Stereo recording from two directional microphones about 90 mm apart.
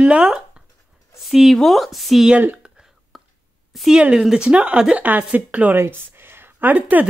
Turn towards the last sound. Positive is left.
turn(degrees=-20)  # may be behind; listen again after turning